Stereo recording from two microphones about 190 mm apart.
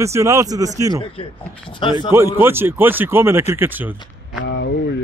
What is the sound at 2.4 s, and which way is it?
Speech, 10° right (ahead or behind).